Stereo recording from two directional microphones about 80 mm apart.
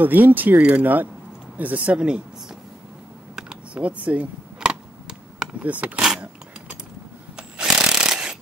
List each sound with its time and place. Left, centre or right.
0.0 s speech: right
3.3 s computer keyboard: centre
5.7 s speech: centre
5.9 s power windows: centre
7.3 s tools: centre